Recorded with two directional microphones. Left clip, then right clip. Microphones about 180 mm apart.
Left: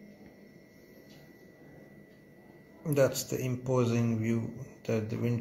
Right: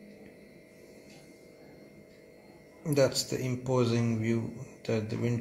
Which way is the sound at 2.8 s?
Centre (ahead or behind).